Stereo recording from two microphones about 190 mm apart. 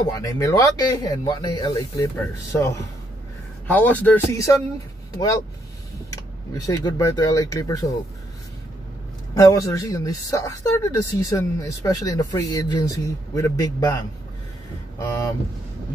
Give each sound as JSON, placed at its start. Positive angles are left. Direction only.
{"t": 0.1, "sound": "speech", "side_deg": 20}
{"t": 9.3, "sound": "speech", "side_deg": 20}